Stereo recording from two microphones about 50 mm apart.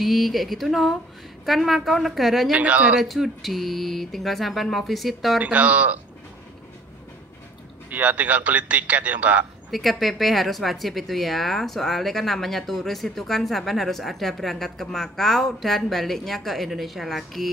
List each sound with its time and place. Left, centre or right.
0.0 s speech: centre
2.5 s speech: right
3.0 s speech: centre
5.4 s speech: right
7.9 s speech: right
9.7 s speech: centre